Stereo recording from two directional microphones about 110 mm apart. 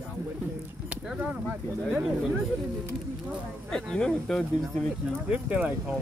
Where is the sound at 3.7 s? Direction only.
5° left (ahead or behind).